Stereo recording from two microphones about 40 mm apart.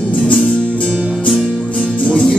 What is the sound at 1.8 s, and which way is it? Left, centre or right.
Music, centre.